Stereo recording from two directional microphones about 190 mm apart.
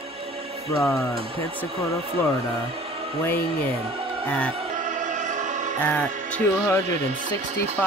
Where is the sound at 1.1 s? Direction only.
30° right (ahead or behind).